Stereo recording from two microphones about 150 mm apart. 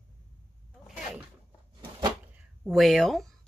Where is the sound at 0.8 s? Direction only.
5° right (ahead or behind).